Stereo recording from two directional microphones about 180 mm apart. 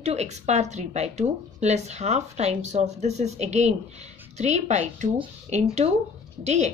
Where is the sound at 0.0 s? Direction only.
35° right (ahead or behind).